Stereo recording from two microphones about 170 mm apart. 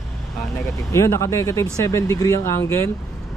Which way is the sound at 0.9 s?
15° left (ahead or behind).